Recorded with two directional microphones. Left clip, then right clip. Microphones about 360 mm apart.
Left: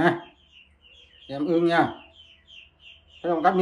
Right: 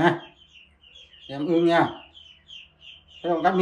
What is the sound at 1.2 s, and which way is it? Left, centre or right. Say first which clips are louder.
Speech: right 1 dB; centre.